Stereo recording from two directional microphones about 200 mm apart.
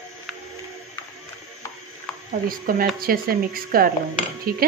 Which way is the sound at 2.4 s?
45° right (ahead or behind).